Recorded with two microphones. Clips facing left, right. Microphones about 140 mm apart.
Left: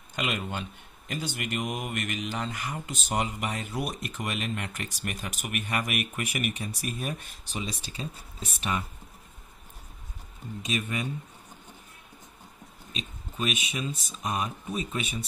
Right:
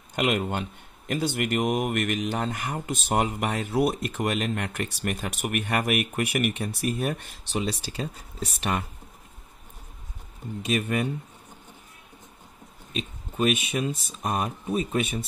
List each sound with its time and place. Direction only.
0.1 s speech: 50° right (ahead or behind); by 8.8 s 65° right (ahead or behind)
10.6 s speech: 60° right (ahead or behind)
12.9 s speech: 55° right (ahead or behind)